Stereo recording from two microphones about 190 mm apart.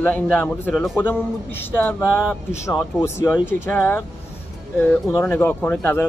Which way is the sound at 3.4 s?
10° left (ahead or behind).